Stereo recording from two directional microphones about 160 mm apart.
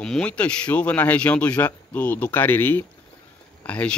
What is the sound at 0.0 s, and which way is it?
Speech, 5° left (ahead or behind).